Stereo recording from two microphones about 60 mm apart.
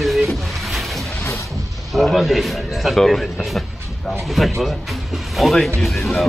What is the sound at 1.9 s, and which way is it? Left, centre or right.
A man's voice, centre.